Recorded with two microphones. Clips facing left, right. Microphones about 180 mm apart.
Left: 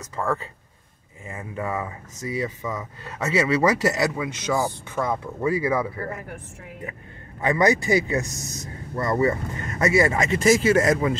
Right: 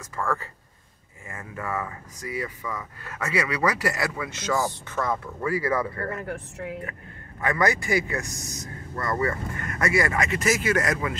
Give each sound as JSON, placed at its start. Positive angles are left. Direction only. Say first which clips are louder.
{"t": 0.0, "sound": "speech", "louder": "left 2 dB", "side_deg": 20}
{"t": 6.9, "sound": "speech", "louder": "left 1 dB", "side_deg": 20}